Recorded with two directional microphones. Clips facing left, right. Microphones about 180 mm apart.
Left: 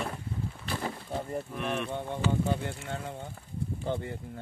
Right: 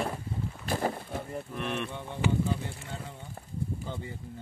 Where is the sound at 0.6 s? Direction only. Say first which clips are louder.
Right 6 dB; 45° right (ahead or behind).